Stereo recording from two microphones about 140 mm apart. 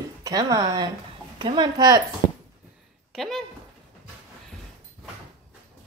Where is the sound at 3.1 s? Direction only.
Centre (ahead or behind).